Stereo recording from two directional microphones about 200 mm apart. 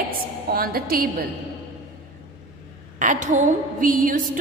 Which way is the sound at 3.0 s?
40° right (ahead or behind).